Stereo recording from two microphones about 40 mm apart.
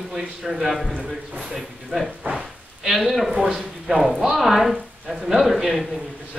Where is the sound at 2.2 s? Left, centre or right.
Right.